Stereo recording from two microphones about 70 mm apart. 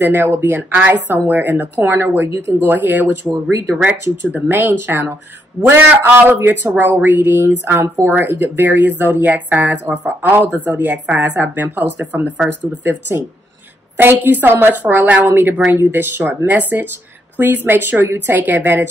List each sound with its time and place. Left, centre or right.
0.0 s speech: right
2.6 s speech: right
3.3 s speech: right
3.8 s speech: right
14.2 s speech: right